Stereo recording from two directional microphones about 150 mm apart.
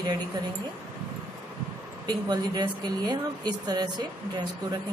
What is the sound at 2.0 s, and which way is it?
A woman's voice, 30° right (ahead or behind).